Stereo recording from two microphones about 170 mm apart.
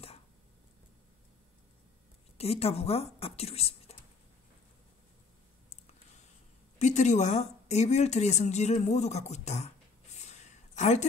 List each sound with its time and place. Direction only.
2.3 s speech: 35° left (ahead or behind)
6.8 s speech: 45° left (ahead or behind)
10.1 s a sound: 45° left (ahead or behind)